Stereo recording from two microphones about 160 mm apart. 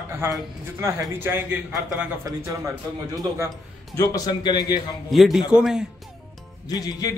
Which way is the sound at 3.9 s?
20° left (ahead or behind).